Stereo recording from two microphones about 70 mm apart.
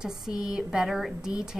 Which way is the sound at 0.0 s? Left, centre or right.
Centre.